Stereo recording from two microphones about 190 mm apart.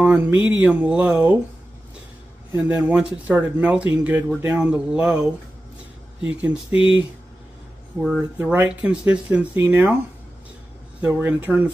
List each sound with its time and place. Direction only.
0.0 s speech: 10° right (ahead or behind)
2.7 s speech: 5° right (ahead or behind)
6.7 s speech: 30° left (ahead or behind)
8.4 s speech: 10° right (ahead or behind)
11.0 s speech: 10° right (ahead or behind)